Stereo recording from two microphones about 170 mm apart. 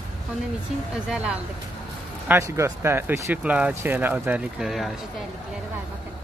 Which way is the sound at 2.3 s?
15° right (ahead or behind).